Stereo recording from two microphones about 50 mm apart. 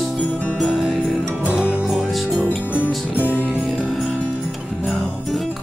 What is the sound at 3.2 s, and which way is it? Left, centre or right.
Music, left.